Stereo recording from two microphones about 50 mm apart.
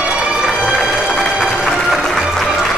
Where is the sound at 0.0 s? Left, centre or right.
Centre.